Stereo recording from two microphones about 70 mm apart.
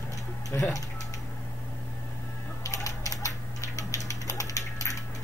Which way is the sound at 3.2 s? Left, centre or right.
Left.